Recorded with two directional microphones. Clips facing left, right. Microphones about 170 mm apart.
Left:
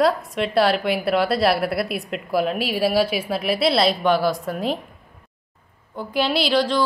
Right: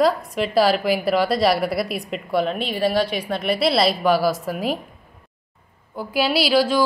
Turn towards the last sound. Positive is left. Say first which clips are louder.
# right 2 dB
turn(degrees=-5)  # may be behind; listen again after turning